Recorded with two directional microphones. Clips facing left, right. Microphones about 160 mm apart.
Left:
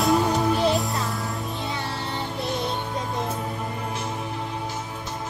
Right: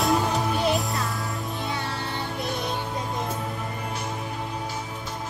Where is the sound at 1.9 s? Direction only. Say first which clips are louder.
Left 1 dB; 15° left (ahead or behind).